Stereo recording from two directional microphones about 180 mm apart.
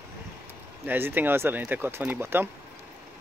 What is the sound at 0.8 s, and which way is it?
Speech, 10° right (ahead or behind).